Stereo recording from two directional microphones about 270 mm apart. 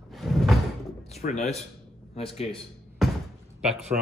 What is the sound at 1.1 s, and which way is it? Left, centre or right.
Speech, left.